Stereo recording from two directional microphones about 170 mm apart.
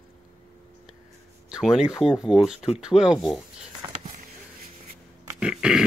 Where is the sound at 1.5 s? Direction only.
5° right (ahead or behind).